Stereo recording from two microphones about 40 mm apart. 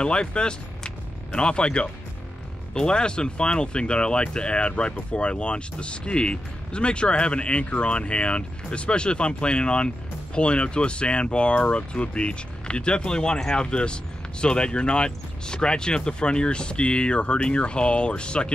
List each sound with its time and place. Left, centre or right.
0.0 s speech: left